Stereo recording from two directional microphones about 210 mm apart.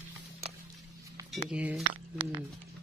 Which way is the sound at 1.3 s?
5° right (ahead or behind).